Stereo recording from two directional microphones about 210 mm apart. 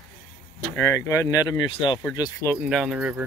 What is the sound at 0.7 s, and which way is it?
Speech, 15° left (ahead or behind).